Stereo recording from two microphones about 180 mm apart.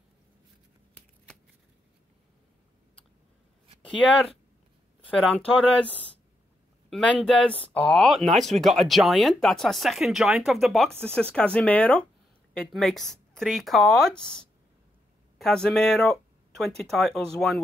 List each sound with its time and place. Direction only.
5.1 s speech: centre (ahead or behind)
6.9 s speech: 5° left (ahead or behind)
15.3 s speech: 5° left (ahead or behind)